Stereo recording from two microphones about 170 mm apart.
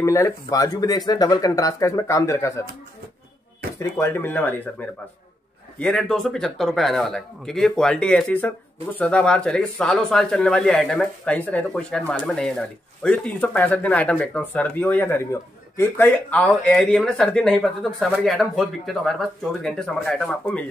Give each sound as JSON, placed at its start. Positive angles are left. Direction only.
{"t": 0.0, "sound": "speech", "side_deg": 15}
{"t": 3.7, "sound": "speech", "side_deg": 15}